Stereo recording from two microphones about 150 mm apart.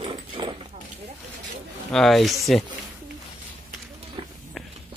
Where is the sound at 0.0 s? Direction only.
35° right (ahead or behind).